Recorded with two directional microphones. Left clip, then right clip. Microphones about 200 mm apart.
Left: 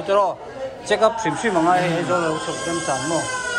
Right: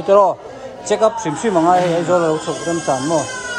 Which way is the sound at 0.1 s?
20° right (ahead or behind).